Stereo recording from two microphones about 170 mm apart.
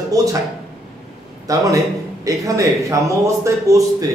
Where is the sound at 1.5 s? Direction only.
20° right (ahead or behind).